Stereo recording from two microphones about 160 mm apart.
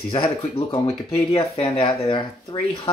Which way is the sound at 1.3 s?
35° left (ahead or behind).